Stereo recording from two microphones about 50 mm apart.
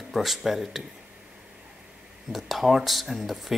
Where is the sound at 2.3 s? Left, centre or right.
Centre.